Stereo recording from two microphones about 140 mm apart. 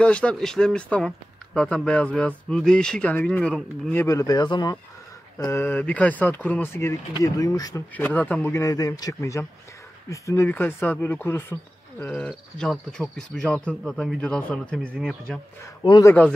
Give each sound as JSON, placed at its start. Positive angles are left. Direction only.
{"t": 0.0, "sound": "speech", "side_deg": 5}
{"t": 4.1, "sound": "speech", "side_deg": 25}
{"t": 5.4, "sound": "speech", "side_deg": 20}
{"t": 7.9, "sound": "speech", "side_deg": 10}
{"t": 15.8, "sound": "speech", "side_deg": 30}